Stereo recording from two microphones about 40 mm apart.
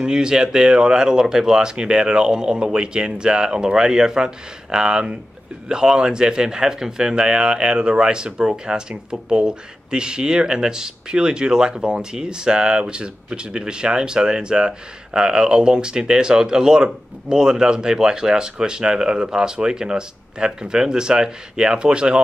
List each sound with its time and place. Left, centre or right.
0.0 s speech: centre